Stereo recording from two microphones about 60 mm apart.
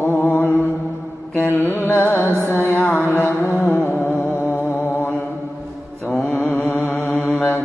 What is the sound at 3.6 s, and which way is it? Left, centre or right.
Music, left.